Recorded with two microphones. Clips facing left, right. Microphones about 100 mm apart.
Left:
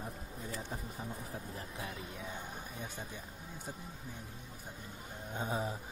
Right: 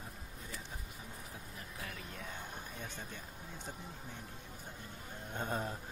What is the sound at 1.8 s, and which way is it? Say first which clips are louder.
A man's voice: left 1 dB; 15° left (ahead or behind).